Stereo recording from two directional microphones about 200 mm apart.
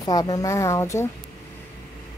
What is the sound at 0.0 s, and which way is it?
Speech, 20° left (ahead or behind).